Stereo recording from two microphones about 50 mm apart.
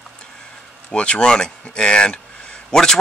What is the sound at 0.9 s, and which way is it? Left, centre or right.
Speech, left.